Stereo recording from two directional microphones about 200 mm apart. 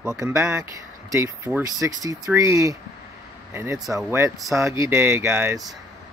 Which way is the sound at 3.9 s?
15° right (ahead or behind).